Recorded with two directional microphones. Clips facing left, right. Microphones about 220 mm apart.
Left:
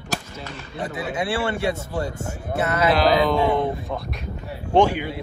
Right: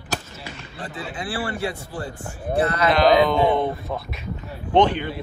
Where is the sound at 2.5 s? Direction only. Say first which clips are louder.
Right 1 dB; 25° left (ahead or behind).